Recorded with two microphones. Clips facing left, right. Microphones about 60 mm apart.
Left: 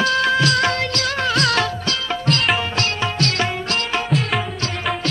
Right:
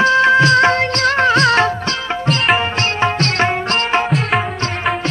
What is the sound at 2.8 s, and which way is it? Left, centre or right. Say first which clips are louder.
Music: right 5 dB; right.